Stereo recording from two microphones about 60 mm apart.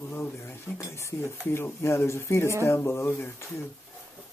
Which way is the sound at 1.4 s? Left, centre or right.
Left.